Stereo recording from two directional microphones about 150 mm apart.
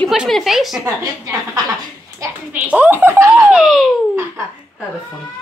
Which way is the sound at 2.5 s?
10° right (ahead or behind).